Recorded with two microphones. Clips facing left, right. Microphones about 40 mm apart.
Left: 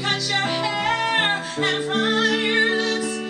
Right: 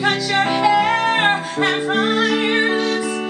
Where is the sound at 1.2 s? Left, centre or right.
Centre.